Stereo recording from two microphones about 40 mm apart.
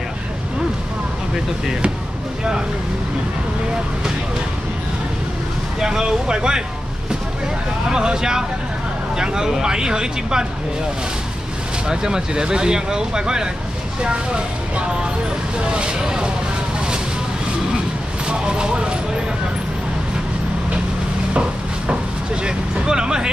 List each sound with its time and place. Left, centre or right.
5.8 s speech: centre
7.9 s speech: centre
11.9 s speech: centre
18.3 s speech: right
21.3 s a sound: right